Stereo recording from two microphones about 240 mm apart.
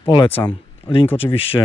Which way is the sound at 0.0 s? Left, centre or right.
Left.